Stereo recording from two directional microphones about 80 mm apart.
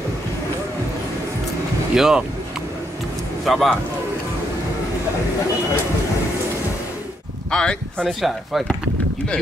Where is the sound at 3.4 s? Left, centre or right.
Centre.